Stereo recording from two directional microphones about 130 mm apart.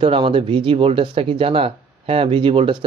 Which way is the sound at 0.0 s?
40° right (ahead or behind).